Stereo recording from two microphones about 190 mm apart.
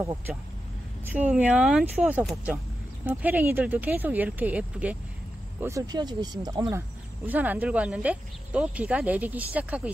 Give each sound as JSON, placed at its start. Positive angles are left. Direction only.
{"t": 1.1, "sound": "speech", "side_deg": -10}
{"t": 7.2, "sound": "speech", "side_deg": -10}